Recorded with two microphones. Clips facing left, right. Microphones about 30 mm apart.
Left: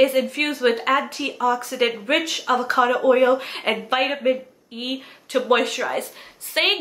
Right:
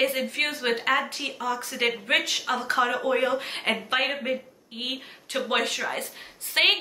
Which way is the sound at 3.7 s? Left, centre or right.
Left.